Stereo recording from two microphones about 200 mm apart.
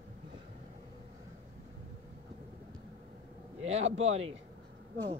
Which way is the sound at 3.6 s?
30° right (ahead or behind).